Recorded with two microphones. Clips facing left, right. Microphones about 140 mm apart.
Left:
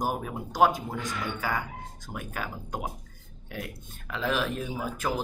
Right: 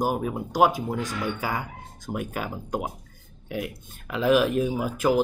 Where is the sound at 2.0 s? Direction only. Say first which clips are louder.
Right 7 dB; 15° right (ahead or behind).